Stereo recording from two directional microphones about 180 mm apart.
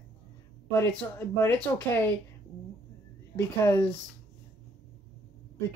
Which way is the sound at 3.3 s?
15° left (ahead or behind).